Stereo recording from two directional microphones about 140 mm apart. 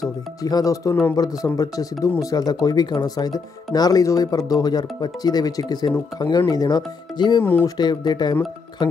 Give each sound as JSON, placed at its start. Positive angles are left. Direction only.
{"t": 0.4, "sound": "speech", "side_deg": 25}